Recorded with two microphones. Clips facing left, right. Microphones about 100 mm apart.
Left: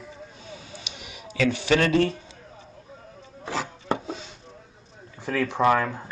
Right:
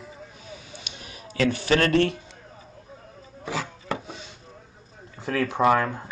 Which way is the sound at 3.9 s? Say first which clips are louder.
Left 4 dB; 25° left (ahead or behind).